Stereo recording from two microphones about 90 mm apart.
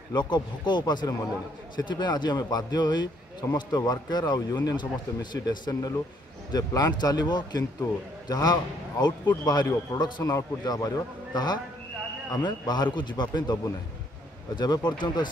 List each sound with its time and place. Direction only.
0.1 s a man's voice: 55° left (ahead or behind)
10.2 s a man's voice: 45° left (ahead or behind)